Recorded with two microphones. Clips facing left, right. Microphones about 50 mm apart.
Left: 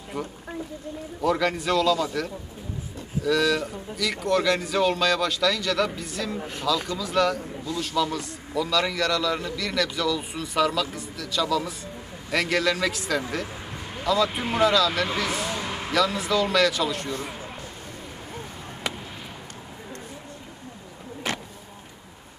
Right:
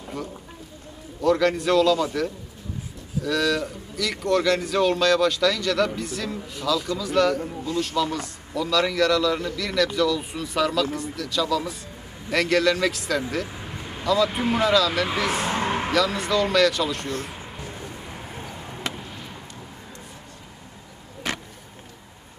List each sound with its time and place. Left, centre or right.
1.2 s a man's voice: centre
3.3 s a man's voice: centre
15.4 s a sound: right
15.9 s a man's voice: centre